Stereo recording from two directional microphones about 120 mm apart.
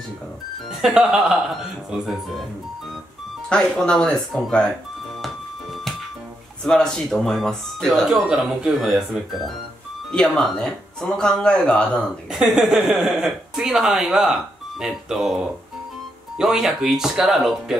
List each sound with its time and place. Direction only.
0.7 s speech: 5° right (ahead or behind)
3.4 s speech: 5° left (ahead or behind)
6.6 s speech: 5° left (ahead or behind)
12.3 s speech: 5° right (ahead or behind)